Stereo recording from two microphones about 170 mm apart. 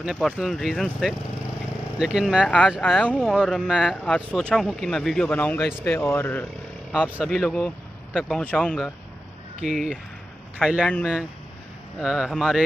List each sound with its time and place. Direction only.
0.0 s speech: centre (ahead or behind)
5.7 s speech: 5° right (ahead or behind)
5.9 s speech: 15° left (ahead or behind)
6.9 s a man's voice: 5° right (ahead or behind)
8.4 s speech: 5° left (ahead or behind)